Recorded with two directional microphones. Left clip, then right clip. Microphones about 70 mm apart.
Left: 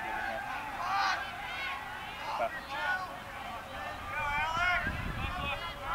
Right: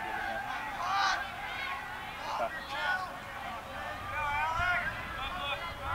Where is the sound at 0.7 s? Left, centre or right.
Right.